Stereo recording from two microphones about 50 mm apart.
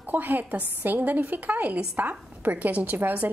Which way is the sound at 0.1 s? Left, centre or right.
Right.